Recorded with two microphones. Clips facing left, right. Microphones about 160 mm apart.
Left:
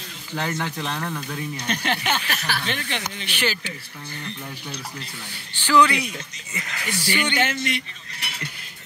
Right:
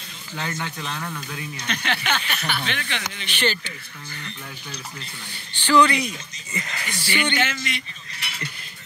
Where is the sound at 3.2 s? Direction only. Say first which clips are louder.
Right 3 dB; 10° left (ahead or behind).